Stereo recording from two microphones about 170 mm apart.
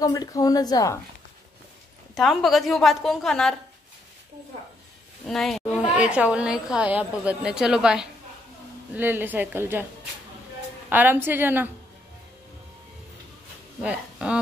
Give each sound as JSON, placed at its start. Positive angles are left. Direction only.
{"t": 0.0, "sound": "a woman's voice", "side_deg": 25}
{"t": 2.1, "sound": "a woman's voice", "side_deg": 0}
{"t": 5.2, "sound": "a woman's voice", "side_deg": 0}
{"t": 10.9, "sound": "a woman's voice", "side_deg": -10}
{"t": 13.8, "sound": "a woman's voice", "side_deg": -5}